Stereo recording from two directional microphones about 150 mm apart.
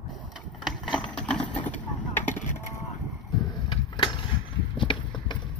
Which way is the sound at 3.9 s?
30° left (ahead or behind).